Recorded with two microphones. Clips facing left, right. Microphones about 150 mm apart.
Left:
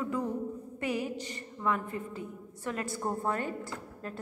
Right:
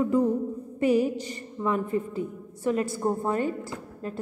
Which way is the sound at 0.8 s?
35° right (ahead or behind).